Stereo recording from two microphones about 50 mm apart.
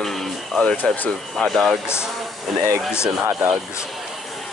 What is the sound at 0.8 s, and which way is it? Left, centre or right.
Speech, left.